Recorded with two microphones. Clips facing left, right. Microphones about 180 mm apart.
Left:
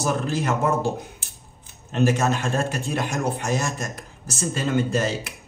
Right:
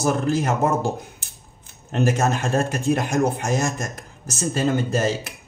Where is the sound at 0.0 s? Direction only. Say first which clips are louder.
Right 3 dB; 45° right (ahead or behind).